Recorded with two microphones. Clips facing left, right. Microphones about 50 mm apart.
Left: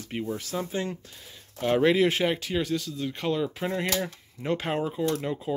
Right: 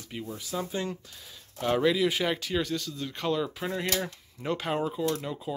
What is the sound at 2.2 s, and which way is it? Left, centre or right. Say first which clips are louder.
Speech: left 2 dB; centre.